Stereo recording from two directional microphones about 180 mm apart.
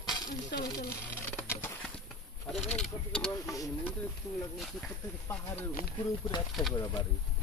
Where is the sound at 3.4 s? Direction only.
20° left (ahead or behind).